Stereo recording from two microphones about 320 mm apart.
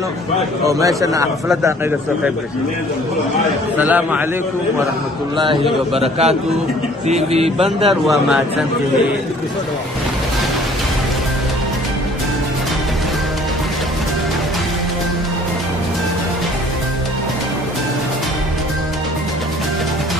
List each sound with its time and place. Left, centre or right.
0.7 s a man's voice: centre
3.7 s a man's voice: centre
5.4 s a man's voice: centre
7.6 s a man's voice: centre